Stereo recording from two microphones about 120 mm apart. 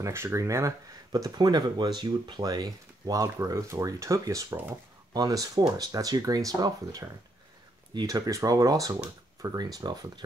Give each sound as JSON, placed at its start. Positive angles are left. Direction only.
{"t": 0.0, "sound": "speech", "side_deg": -20}